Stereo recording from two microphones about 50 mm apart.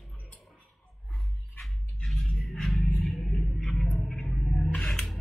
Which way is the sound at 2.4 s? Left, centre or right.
Centre.